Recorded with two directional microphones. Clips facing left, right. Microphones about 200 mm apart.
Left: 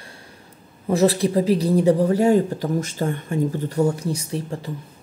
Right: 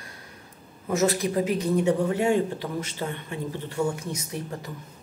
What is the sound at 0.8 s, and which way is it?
Speech, 30° left (ahead or behind).